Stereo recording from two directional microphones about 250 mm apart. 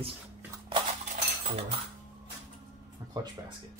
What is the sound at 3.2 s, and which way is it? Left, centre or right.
Speech, centre.